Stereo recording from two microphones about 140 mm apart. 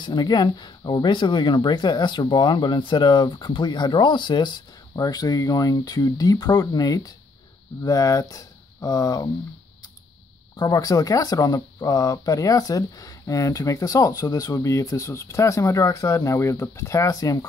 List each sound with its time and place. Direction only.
0.0 s speech: 30° left (ahead or behind)
10.5 s speech: 30° left (ahead or behind)